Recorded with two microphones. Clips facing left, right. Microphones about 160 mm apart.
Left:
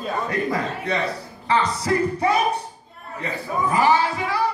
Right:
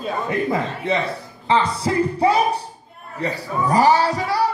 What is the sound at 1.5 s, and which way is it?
Music, 25° right (ahead or behind).